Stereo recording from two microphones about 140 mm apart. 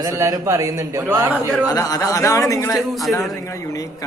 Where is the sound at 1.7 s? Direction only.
25° left (ahead or behind).